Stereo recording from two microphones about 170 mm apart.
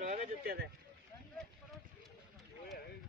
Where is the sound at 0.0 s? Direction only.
50° right (ahead or behind).